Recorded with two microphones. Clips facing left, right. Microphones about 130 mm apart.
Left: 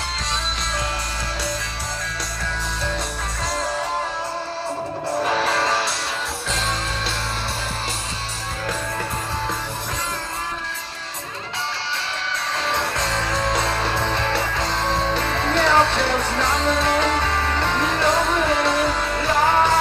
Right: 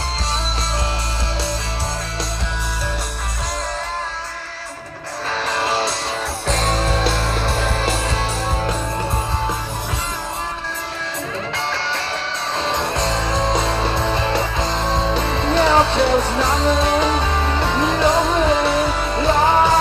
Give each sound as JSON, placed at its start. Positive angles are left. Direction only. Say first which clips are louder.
{"t": 5.2, "sound": "music", "louder": "left 1 dB", "side_deg": 5}
{"t": 6.4, "sound": "music", "louder": "right 9 dB", "side_deg": -50}
{"t": 7.5, "sound": "music", "louder": "right 8 dB", "side_deg": -70}
{"t": 11.5, "sound": "music", "louder": "right 2 dB", "side_deg": -65}
{"t": 12.6, "sound": "music", "louder": "right 4 dB", "side_deg": -20}